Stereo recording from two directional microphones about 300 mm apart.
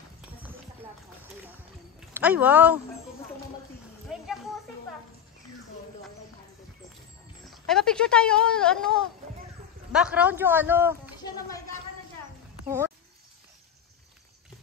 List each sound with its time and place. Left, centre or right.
2.1 s speech: centre
4.1 s music: centre
7.5 s speech: centre
11.2 s speech: centre
12.6 s a sound: centre